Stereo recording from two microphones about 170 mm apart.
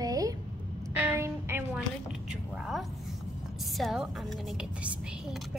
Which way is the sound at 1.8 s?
5° right (ahead or behind).